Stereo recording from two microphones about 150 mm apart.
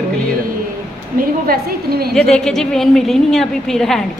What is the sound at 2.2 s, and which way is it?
A woman's voice, 5° left (ahead or behind).